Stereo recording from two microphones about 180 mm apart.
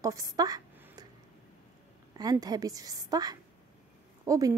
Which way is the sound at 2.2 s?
20° right (ahead or behind).